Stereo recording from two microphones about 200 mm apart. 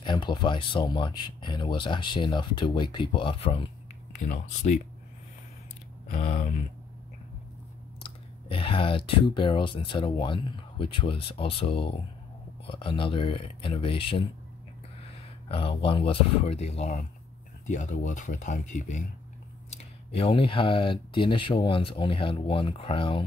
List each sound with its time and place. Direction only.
0.0 s speech: 20° left (ahead or behind)
6.0 s speech: 35° left (ahead or behind)
8.0 s speech: 25° left (ahead or behind)
15.4 s speech: 25° left (ahead or behind)